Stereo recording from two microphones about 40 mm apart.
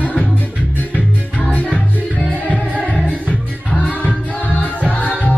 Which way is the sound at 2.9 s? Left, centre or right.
Left.